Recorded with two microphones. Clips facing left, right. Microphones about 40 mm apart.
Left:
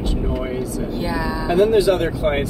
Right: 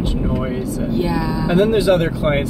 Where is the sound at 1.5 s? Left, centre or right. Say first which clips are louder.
Even; right.